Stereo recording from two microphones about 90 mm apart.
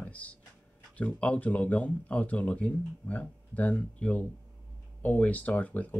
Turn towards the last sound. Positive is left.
turn(degrees=15)  # may be behind; listen again after turning